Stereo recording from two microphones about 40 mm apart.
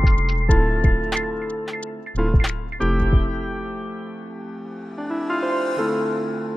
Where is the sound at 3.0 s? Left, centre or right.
Centre.